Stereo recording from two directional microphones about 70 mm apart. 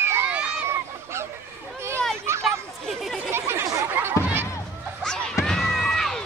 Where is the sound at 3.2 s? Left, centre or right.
Right.